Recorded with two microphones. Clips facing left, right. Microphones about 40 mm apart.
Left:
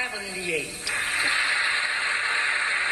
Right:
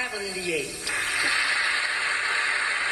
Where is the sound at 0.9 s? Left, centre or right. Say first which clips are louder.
Even; left.